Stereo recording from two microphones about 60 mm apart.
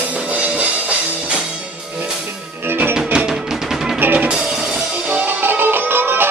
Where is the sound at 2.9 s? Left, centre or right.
Centre.